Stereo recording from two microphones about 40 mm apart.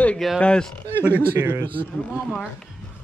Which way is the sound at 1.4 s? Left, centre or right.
Right.